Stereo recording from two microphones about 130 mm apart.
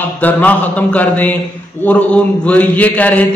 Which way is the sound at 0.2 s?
10° left (ahead or behind).